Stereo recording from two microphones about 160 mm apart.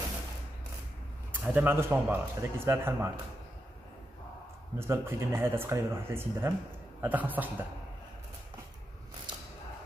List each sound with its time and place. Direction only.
1.3 s a man's voice: 10° right (ahead or behind)
4.7 s a man's voice: 15° right (ahead or behind)